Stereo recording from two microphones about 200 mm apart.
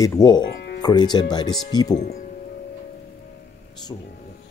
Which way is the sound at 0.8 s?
20° left (ahead or behind).